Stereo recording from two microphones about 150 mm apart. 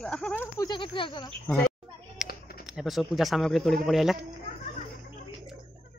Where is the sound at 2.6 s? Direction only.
Centre (ahead or behind).